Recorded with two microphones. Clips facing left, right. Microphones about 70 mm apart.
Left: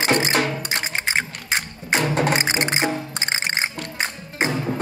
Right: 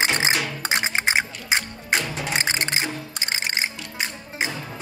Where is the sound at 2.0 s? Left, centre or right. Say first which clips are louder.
Left 8 dB; left.